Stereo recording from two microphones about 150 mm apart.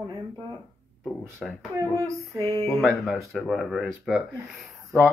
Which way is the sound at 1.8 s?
20° right (ahead or behind).